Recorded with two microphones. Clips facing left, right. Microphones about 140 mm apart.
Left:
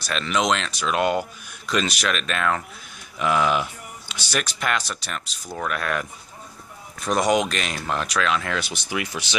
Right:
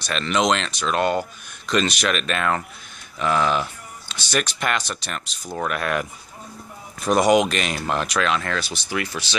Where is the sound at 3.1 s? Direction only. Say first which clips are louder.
Even; 10° left (ahead or behind).